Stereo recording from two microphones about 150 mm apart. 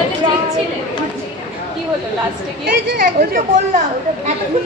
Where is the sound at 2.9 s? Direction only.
70° right (ahead or behind).